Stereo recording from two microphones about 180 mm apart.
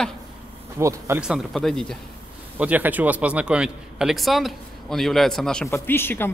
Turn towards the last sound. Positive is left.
turn(degrees=10)  # may be behind; listen again after turning